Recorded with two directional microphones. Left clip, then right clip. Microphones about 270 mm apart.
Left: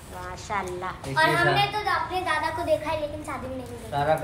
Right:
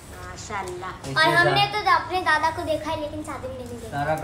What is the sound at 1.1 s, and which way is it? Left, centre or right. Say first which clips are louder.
A woman's voice: right 3 dB; right.